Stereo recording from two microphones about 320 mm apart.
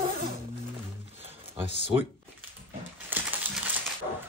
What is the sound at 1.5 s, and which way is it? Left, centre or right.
Speech, centre.